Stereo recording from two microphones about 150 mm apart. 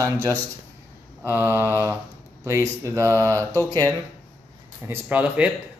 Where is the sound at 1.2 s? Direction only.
15° right (ahead or behind).